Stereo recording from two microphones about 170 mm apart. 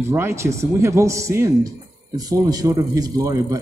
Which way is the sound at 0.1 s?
15° right (ahead or behind).